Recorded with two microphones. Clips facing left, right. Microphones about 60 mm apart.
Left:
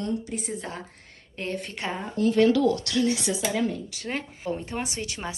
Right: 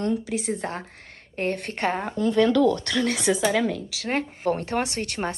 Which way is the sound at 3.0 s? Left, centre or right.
Right.